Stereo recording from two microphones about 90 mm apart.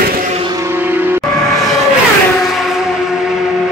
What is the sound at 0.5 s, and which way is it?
Music, 25° right (ahead or behind).